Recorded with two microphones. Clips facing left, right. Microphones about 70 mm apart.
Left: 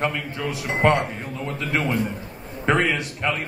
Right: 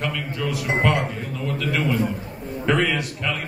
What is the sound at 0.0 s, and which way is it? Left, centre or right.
A man's voice, left.